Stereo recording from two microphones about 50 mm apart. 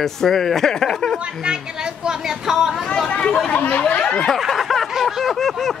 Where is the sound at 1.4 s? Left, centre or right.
Centre.